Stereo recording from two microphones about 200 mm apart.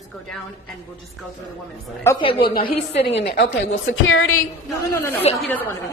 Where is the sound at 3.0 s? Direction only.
60° left (ahead or behind); by 4.4 s 90° left.